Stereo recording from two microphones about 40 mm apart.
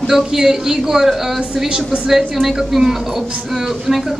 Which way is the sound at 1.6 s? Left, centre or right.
Right.